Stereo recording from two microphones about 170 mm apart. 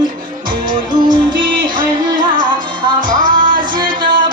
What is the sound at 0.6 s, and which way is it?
Music, 25° right (ahead or behind).